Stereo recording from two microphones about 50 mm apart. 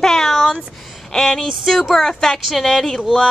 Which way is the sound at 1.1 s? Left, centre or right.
Centre.